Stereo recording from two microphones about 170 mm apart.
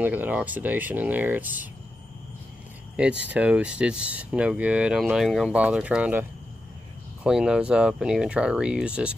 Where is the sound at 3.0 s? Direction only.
5° right (ahead or behind).